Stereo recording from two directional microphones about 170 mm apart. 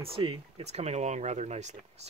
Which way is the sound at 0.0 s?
35° right (ahead or behind).